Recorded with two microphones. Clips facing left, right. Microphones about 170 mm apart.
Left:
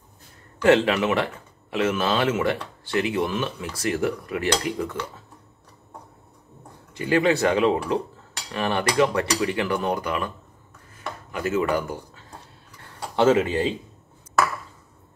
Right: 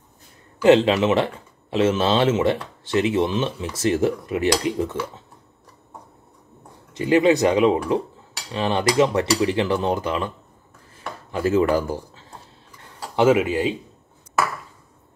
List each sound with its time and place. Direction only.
0.6 s speech: 20° right (ahead or behind)
6.9 s speech: 20° right (ahead or behind)
11.3 s speech: 30° right (ahead or behind)
13.1 s speech: 10° right (ahead or behind)